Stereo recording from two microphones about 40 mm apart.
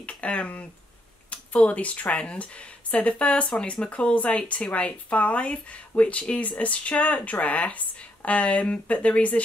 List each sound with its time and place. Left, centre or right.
0.0 s speech: left